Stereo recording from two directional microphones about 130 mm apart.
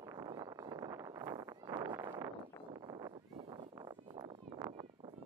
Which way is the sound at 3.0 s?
35° right (ahead or behind).